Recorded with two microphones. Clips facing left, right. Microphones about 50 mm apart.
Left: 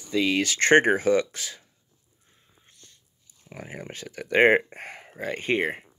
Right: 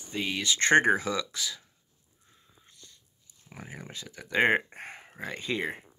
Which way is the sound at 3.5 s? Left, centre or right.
Left.